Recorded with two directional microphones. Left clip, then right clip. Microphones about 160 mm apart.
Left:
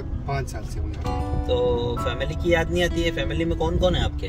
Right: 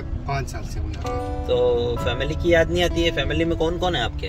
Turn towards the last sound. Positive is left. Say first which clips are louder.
# right 1 dB
turn(degrees=-50)  # may be behind; listen again after turning